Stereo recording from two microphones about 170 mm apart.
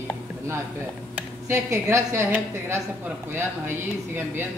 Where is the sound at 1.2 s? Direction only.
15° right (ahead or behind).